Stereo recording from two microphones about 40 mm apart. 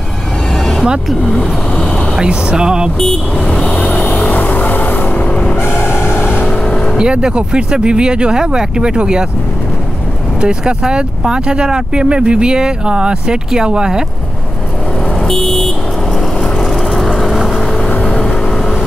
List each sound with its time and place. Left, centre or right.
1.2 s speech: centre
2.2 s speech: right
3.6 s vehicle: centre
4.0 s vehicle: left
4.3 s music: left
5.6 s vehicle: left
6.4 s vehicle: centre
6.7 s vehicle: left
7.0 s speech: right
10.4 s speech: right
15.1 s vehicle: centre
17.8 s vehicle: left
18.2 s vehicle: centre